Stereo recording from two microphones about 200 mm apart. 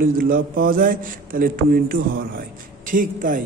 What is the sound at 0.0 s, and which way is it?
A man's voice, 45° right (ahead or behind).